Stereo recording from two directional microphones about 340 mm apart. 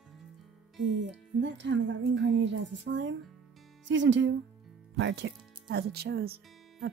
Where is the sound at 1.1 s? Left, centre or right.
Right.